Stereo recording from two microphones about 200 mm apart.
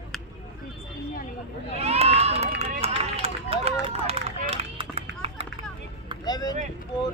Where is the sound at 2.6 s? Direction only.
30° right (ahead or behind).